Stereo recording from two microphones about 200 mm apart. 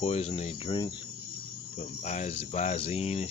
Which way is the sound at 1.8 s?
35° left (ahead or behind).